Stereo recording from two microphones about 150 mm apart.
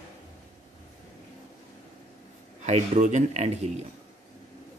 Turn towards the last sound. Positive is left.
turn(degrees=-45)  # may be behind; listen again after turning